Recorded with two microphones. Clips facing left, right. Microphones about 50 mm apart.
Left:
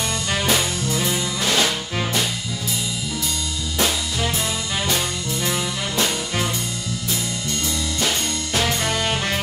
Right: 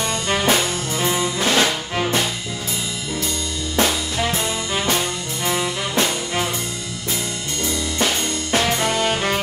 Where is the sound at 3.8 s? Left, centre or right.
Right.